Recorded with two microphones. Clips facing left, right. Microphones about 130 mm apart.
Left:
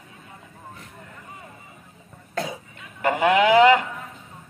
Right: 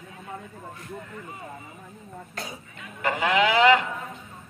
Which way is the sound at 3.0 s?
50° left (ahead or behind).